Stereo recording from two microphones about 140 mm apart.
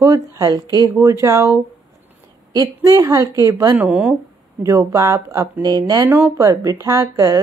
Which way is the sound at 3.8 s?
10° right (ahead or behind).